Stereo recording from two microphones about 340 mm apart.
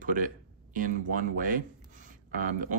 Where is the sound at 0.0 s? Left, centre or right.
Right.